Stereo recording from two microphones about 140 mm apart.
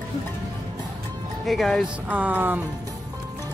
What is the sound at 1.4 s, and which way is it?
Music, centre (ahead or behind).